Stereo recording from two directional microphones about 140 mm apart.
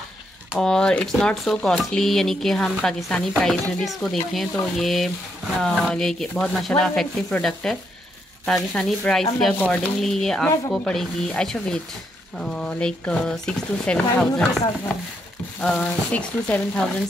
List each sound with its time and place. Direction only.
0.6 s speech: 5° left (ahead or behind)
15.6 s frying: 10° left (ahead or behind)